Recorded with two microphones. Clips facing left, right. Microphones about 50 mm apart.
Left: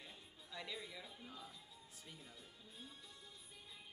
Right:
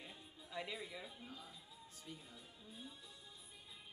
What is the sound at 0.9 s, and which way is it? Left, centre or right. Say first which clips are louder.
Speech: right 2 dB; right.